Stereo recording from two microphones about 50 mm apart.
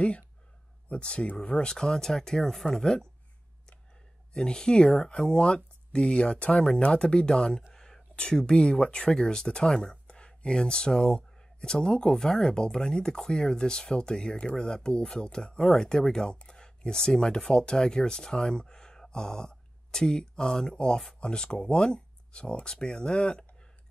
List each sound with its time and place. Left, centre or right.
0.8 s speech: left
1.7 s speech: centre
4.3 s speech: centre